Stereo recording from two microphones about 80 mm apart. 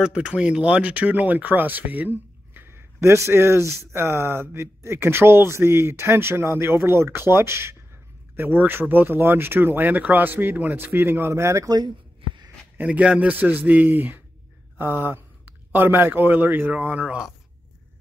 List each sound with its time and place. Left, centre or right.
0.0 s speech: centre; by 11.7 s right
11.7 s a sound: right
12.7 s speech: centre